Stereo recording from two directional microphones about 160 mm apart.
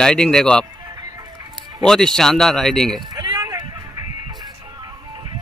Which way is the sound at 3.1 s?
25° right (ahead or behind).